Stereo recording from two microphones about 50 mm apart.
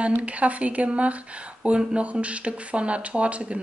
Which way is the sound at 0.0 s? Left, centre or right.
Right.